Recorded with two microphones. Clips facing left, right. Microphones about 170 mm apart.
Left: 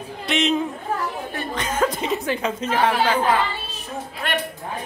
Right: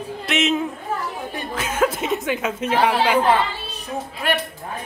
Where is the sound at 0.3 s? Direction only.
5° right (ahead or behind).